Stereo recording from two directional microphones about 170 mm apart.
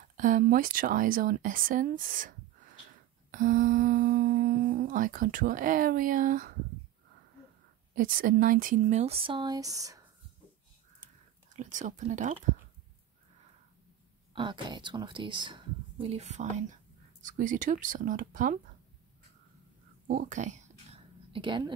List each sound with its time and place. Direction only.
0.2 s speech: 55° right (ahead or behind)
3.3 s humming: 55° right (ahead or behind)
7.9 s speech: 55° right (ahead or behind); by 10.0 s 20° right (ahead or behind)
11.5 s humming: 45° right (ahead or behind)
14.3 s a woman's voice: 25° right (ahead or behind); by 16.7 s 45° right (ahead or behind)
17.2 s humming: 50° right (ahead or behind)
20.1 s a sound: 50° right (ahead or behind)
21.3 s a woman's voice: 30° right (ahead or behind)